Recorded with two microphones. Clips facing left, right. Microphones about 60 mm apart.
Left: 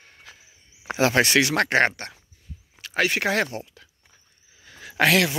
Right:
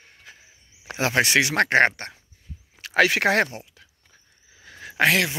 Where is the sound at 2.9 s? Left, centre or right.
Right.